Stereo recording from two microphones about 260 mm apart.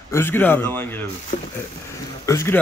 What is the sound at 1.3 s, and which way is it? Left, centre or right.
Speech, left.